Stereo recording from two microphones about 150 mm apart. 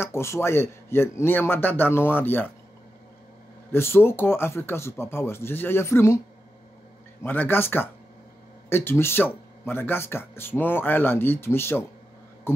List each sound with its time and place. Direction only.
0.0 s speech: 15° left (ahead or behind)
3.7 s speech: 15° left (ahead or behind)
7.2 s speech: 15° left (ahead or behind)